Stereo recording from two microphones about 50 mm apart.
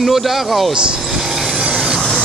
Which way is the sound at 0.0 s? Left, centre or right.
Centre.